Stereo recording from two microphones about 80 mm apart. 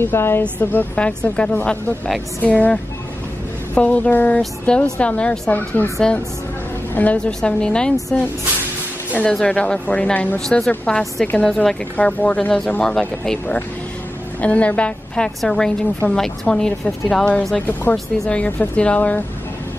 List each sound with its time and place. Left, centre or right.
0.0 s speech: left
0.4 s a woman's voice: centre
6.9 s a woman's voice: centre
9.3 s a woman's voice: centre
10.4 s a woman's voice: centre
14.4 s a woman's voice: centre
17.6 s speech: left
17.9 s a woman's voice: centre